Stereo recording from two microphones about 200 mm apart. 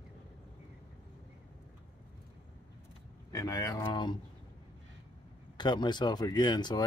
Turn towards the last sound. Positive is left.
turn(degrees=20)  # may be behind; listen again after turning